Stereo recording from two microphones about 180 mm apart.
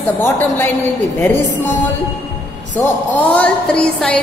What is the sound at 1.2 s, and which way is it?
Mantra, 10° left (ahead or behind).